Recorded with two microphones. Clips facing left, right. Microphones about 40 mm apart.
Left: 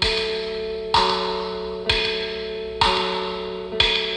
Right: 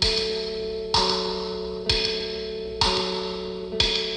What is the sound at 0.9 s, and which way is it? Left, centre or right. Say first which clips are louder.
Music: left 5 dB; left.